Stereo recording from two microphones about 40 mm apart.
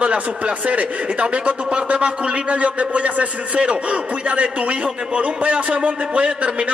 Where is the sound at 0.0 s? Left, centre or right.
Right.